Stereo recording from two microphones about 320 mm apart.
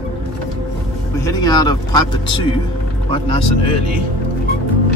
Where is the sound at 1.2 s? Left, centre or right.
Centre.